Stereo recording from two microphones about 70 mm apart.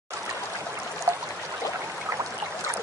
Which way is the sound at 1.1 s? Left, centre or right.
Right.